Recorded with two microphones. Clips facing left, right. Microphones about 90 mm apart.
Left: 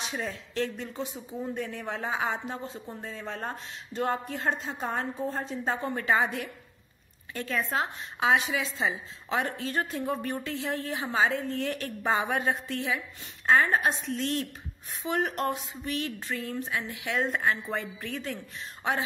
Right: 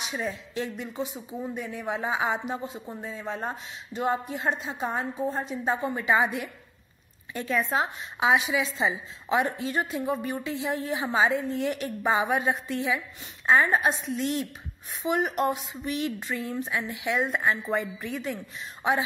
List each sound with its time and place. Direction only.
0.1 s a woman's voice: 10° right (ahead or behind)